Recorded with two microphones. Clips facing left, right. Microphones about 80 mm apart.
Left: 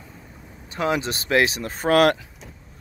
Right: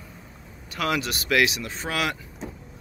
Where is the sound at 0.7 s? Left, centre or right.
Left.